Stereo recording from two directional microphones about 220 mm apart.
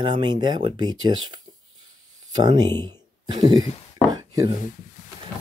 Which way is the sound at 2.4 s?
20° right (ahead or behind).